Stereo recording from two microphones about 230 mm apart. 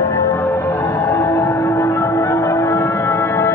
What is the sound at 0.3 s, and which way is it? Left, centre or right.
Music, centre.